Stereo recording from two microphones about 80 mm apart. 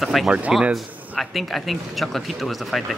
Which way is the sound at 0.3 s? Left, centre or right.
Centre.